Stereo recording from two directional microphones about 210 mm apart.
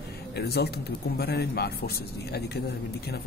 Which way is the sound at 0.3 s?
50° left (ahead or behind).